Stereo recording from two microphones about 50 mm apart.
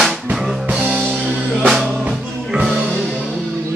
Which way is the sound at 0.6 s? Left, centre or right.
Right.